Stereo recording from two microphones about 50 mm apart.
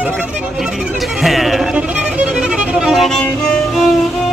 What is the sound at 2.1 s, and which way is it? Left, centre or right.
Violin, right.